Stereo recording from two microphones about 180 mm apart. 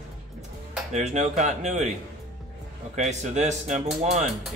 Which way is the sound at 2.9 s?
40° right (ahead or behind).